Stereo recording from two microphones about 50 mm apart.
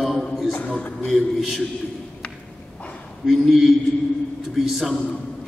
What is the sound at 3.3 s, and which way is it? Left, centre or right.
A man's voice, centre.